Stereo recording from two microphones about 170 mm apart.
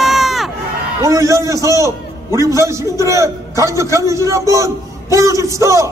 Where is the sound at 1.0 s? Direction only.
20° right (ahead or behind).